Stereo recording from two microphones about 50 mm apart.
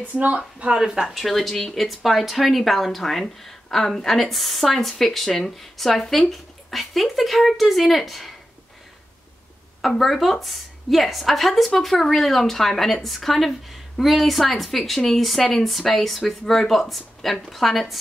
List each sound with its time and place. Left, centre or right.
0.0 s speech: right
0.7 s a woman's voice: centre
9.8 s a woman's voice: centre